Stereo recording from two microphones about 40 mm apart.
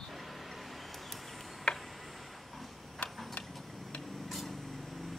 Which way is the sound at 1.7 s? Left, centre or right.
Centre.